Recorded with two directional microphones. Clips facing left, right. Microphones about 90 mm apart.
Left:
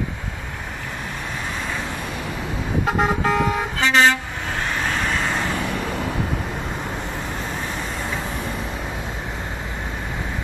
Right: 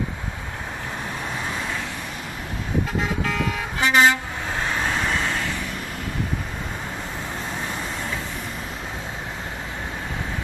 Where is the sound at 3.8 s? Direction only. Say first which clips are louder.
Even; 10° right (ahead or behind).